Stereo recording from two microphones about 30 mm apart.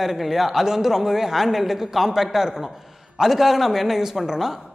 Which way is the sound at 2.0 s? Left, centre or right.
Centre.